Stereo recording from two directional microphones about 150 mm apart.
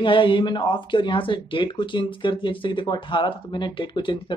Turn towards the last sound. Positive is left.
turn(degrees=30)  # may be behind; listen again after turning